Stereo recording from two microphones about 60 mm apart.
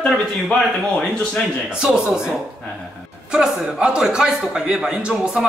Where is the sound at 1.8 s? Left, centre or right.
Centre.